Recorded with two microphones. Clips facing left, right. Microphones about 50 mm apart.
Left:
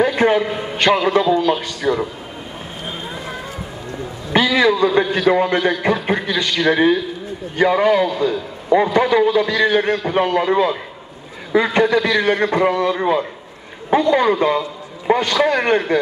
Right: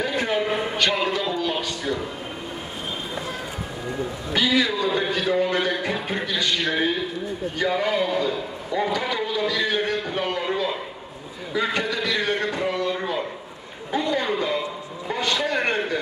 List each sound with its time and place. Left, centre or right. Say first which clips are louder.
0.0 s a sound: left 9 dB; left
0.7 s a man's voice: left 12 dB; left
4.4 s a man's voice: left 7 dB; left